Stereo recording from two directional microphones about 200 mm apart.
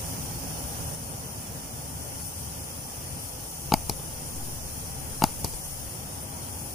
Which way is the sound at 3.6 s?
Centre (ahead or behind).